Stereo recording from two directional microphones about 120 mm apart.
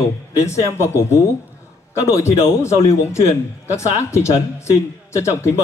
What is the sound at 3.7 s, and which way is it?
A man's voice, 25° left (ahead or behind).